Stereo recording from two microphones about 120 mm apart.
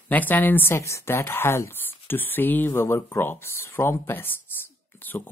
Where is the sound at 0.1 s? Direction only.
15° left (ahead or behind).